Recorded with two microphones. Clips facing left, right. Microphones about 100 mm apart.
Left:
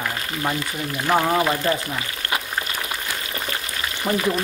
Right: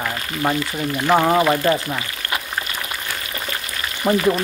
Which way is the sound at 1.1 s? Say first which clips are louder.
Right 3 dB; 15° right (ahead or behind).